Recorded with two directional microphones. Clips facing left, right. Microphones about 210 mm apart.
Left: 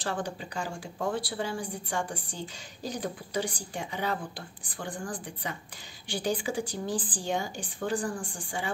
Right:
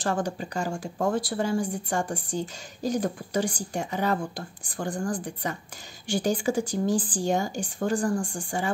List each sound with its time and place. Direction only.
0.0 s speech: 45° right (ahead or behind)